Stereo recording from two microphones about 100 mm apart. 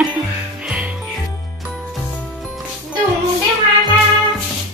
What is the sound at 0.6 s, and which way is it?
Music, 15° right (ahead or behind).